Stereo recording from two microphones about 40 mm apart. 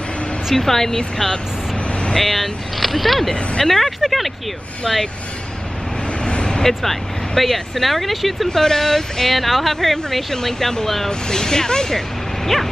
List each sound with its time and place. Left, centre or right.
0.6 s speech: centre
1.9 s vehicle: left
2.1 s speech: centre
6.2 s vehicle: left
6.8 s speech: centre
8.5 s speech: centre